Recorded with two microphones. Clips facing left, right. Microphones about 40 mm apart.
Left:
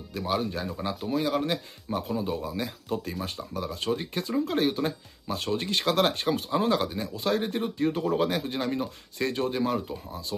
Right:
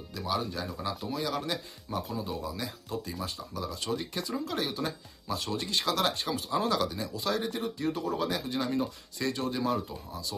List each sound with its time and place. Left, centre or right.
0.1 s speech: left
0.7 s speech: left
1.1 s speech: left